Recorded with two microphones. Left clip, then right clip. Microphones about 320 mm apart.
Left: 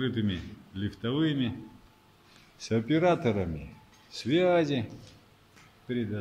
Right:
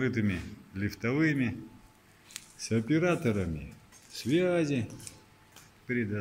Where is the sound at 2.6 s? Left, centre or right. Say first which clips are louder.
Left 3 dB; centre.